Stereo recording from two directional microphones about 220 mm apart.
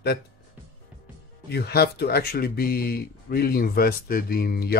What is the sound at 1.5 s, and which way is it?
Speech, 45° left (ahead or behind).